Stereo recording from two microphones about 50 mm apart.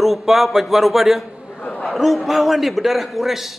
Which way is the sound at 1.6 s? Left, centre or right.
Left.